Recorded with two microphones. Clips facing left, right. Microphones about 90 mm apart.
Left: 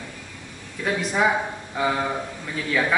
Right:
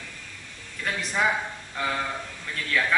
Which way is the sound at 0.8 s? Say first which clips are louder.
Left 4 dB; 10° left (ahead or behind).